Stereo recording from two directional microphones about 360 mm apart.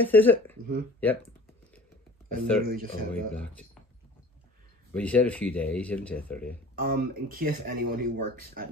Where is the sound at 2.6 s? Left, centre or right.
Right.